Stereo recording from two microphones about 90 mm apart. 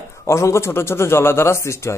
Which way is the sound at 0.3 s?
30° left (ahead or behind).